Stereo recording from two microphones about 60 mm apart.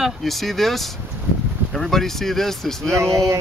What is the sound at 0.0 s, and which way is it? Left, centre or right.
Speech, centre.